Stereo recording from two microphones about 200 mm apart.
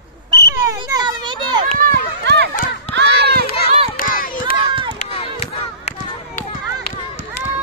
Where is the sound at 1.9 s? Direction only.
55° right (ahead or behind).